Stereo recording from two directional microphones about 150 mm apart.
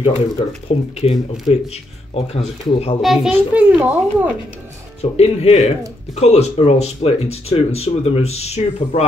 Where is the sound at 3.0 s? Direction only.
5° right (ahead or behind).